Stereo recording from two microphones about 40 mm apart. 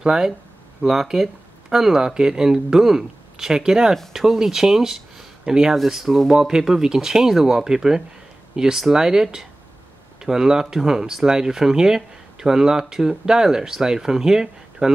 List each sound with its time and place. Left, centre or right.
0.0 s speech: centre